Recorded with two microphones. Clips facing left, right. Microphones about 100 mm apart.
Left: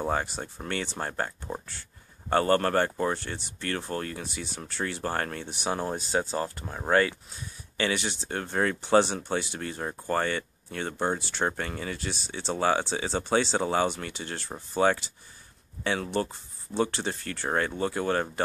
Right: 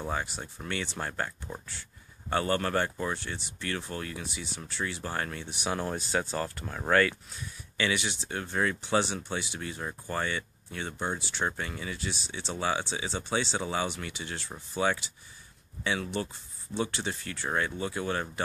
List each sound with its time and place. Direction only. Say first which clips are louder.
0.0 s speech: left 5 dB; 40° left (ahead or behind)